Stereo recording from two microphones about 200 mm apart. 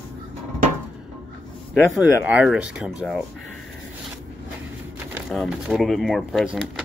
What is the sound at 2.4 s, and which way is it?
Speech, 5° right (ahead or behind).